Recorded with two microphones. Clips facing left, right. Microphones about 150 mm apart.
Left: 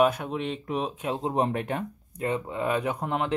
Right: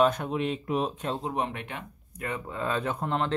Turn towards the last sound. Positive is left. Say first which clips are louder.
# left 1 dB
turn(degrees=10)  # may be behind; listen again after turning